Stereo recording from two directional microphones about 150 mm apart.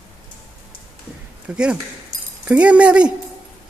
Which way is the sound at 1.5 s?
5° right (ahead or behind).